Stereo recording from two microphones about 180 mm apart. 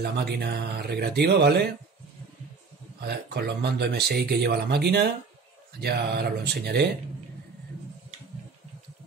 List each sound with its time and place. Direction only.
0.0 s speech: 70° right (ahead or behind)
3.0 s speech: 65° right (ahead or behind)